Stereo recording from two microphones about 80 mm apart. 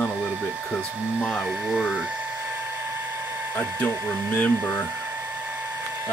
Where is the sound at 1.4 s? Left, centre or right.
Centre.